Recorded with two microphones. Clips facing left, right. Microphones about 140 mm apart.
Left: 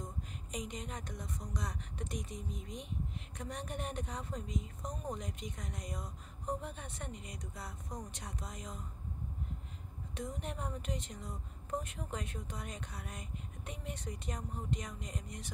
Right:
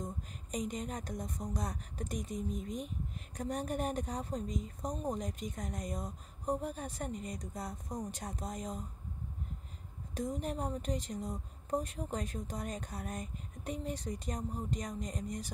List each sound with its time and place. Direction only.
0.5 s a woman's voice: 45° right (ahead or behind)
10.1 s a woman's voice: 40° right (ahead or behind)